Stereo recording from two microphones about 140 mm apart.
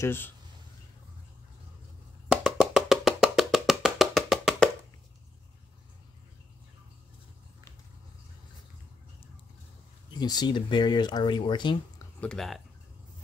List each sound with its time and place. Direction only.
0.0 s speech: 15° left (ahead or behind)
2.2 s music: 5° right (ahead or behind)
10.1 s speech: 30° left (ahead or behind)
12.2 s speech: 5° left (ahead or behind)